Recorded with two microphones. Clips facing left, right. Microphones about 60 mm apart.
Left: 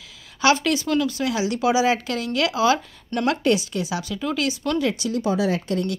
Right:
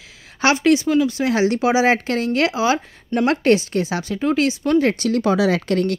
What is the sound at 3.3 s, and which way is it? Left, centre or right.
Speech, right.